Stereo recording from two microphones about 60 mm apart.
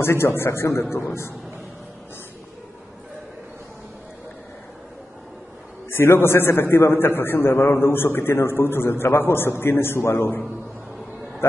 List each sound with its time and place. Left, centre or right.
0.0 s a man's voice: left
5.9 s a man's voice: left